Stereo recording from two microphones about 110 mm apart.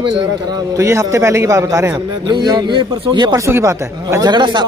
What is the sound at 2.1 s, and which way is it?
A man's voice, 40° right (ahead or behind).